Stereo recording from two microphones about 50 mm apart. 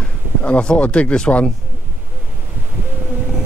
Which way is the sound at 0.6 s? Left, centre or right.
Centre.